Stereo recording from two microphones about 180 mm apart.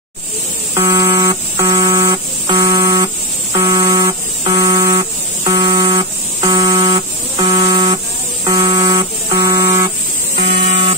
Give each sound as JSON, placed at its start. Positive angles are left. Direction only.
{"t": 0.7, "sound": "buzzer", "side_deg": -25}
{"t": 2.5, "sound": "buzzer", "side_deg": -25}
{"t": 6.9, "sound": "music", "side_deg": -30}
{"t": 8.5, "sound": "buzzer", "side_deg": -20}